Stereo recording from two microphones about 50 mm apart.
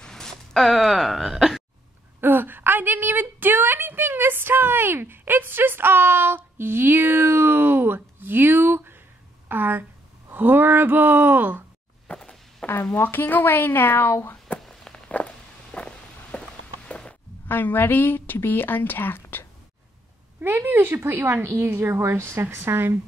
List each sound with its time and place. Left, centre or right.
0.0 s a sound: centre
2.1 s a sound: right
10.3 s speech: right
12.1 s a sound: centre
12.9 s a woman's voice: left
14.6 s walk: centre
15.2 s walk: left
15.7 s walk: left
17.5 s a woman's voice: left
20.4 s a woman's voice: right